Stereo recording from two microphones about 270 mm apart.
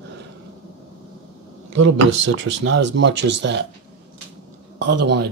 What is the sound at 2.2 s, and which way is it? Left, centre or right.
Speech, right.